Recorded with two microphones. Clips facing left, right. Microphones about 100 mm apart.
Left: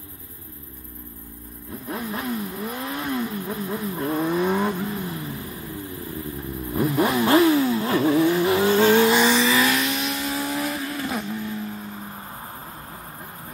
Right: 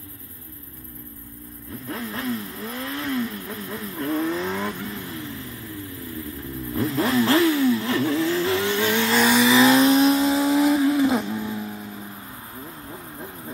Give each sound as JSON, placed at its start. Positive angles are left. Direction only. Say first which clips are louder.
{"t": 1.9, "sound": "vehicle", "louder": "even", "side_deg": 20}
{"t": 6.7, "sound": "vehicle", "louder": "left 1 dB", "side_deg": 25}
{"t": 9.1, "sound": "vehicle", "louder": "even", "side_deg": 0}
{"t": 9.6, "sound": "vehicle", "louder": "right 7 dB", "side_deg": -30}